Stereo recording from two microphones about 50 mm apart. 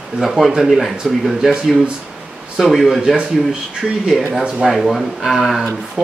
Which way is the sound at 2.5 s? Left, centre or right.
Centre.